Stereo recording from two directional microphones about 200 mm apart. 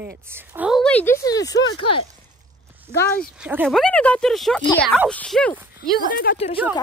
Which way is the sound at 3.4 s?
5° right (ahead or behind).